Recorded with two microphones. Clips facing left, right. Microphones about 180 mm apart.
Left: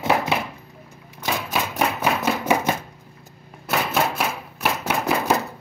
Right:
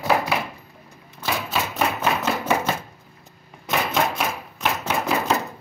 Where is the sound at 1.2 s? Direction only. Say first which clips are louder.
Left 1 dB; 15° left (ahead or behind).